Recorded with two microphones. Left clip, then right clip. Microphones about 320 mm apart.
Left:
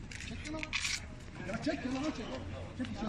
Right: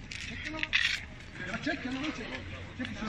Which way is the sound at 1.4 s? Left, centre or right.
Centre.